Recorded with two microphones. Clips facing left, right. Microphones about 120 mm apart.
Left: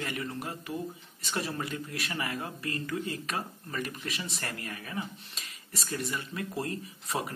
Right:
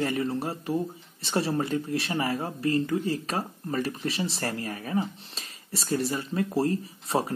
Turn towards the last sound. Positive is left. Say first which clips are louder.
# right 7 dB
turn(degrees=-30)  # may be behind; listen again after turning